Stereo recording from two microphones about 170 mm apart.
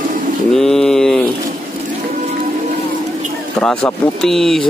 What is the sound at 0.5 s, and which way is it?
Mantra, centre (ahead or behind).